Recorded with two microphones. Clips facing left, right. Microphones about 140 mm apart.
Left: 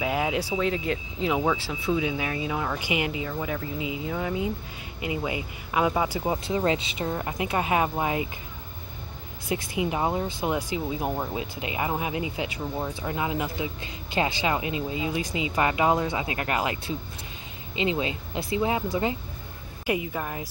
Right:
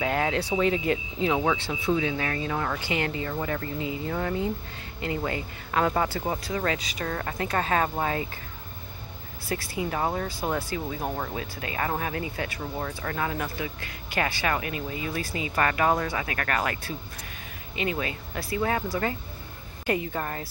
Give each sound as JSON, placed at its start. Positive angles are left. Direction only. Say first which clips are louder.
{"t": 0.0, "sound": "speech", "louder": "even", "side_deg": 10}
{"t": 2.0, "sound": "speech", "louder": "even", "side_deg": 10}
{"t": 6.4, "sound": "speech", "louder": "left 3 dB", "side_deg": 25}
{"t": 9.5, "sound": "speech", "louder": "left 2 dB", "side_deg": 20}
{"t": 19.9, "sound": "speech", "louder": "even", "side_deg": 5}